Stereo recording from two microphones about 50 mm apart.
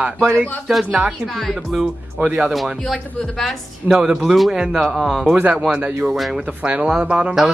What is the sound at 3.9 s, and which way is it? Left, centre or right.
Speech, centre.